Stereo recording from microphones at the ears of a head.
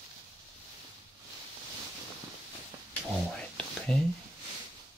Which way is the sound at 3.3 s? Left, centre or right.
Centre.